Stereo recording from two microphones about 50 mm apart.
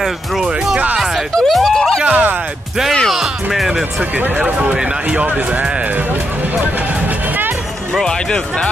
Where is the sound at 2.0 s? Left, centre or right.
Right.